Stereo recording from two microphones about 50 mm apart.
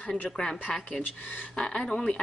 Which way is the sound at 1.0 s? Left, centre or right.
Left.